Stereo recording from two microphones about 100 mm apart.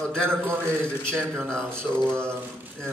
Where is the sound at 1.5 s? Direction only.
10° left (ahead or behind).